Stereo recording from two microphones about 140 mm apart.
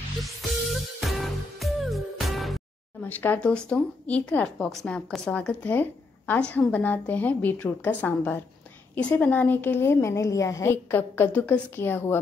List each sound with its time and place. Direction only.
0.2 s music: centre (ahead or behind)
3.0 s speech: 15° left (ahead or behind)